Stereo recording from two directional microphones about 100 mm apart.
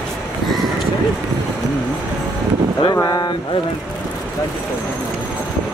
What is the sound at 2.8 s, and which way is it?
Speech, 45° left (ahead or behind).